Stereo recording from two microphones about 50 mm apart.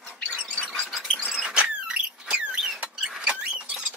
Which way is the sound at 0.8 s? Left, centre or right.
Centre.